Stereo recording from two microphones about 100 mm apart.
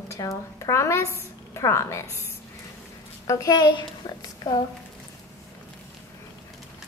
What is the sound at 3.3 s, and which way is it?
Speech, 30° left (ahead or behind).